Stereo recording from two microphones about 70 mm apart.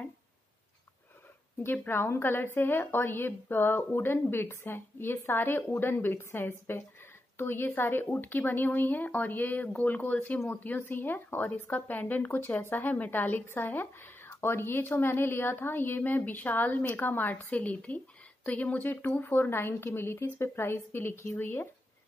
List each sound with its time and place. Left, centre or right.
1.6 s a woman's voice: left